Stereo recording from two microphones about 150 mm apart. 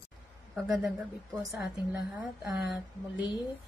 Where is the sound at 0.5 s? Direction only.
Centre (ahead or behind).